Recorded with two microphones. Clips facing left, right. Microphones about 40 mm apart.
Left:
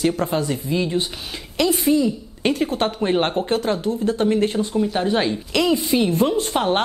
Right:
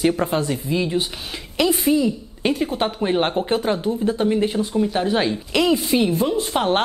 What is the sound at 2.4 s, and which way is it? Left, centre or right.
Speech, centre.